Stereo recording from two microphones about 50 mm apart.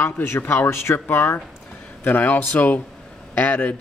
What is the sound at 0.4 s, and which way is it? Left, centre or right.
Speech, left.